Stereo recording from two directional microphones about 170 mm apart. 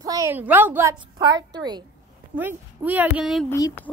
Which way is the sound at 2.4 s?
10° right (ahead or behind).